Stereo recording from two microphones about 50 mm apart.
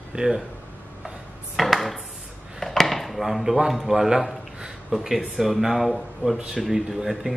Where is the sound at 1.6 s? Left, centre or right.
Centre.